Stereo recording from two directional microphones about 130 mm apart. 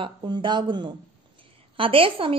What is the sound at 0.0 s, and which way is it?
A woman's voice, 40° right (ahead or behind).